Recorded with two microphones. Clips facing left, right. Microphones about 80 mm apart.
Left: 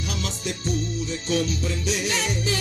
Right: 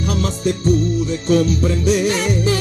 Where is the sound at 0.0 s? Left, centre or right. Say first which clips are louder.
Right 10 dB; right.